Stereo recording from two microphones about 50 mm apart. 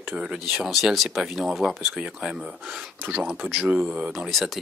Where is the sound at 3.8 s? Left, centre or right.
Centre.